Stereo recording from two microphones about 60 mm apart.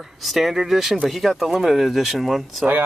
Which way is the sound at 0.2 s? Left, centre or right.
Centre.